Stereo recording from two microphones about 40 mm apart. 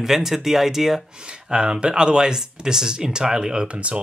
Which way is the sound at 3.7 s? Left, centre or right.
Right.